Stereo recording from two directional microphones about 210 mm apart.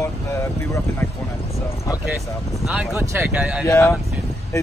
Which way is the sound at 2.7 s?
5° right (ahead or behind).